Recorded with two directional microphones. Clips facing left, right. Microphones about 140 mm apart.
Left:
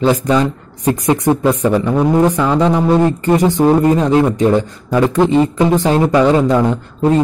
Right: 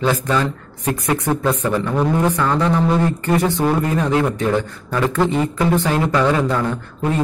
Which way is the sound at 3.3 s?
15° left (ahead or behind).